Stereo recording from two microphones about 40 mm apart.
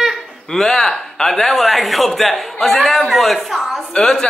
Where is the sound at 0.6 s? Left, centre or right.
Centre.